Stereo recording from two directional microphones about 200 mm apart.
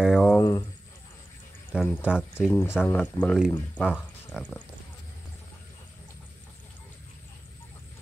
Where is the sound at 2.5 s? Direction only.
15° left (ahead or behind).